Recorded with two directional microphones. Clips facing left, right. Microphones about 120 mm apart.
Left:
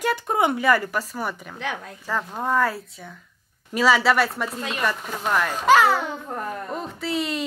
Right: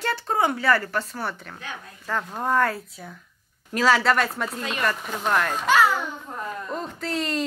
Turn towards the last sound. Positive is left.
turn(degrees=5)  # may be behind; listen again after turning